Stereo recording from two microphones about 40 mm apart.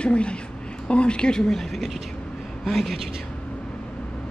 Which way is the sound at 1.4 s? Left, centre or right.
Centre.